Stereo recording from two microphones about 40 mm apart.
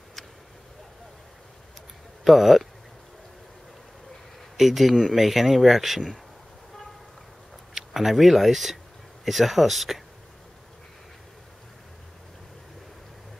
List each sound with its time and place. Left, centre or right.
2.2 s speech: centre
4.6 s speech: centre
7.7 s speech: centre